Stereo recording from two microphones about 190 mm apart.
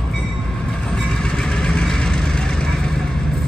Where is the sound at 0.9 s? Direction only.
5° left (ahead or behind).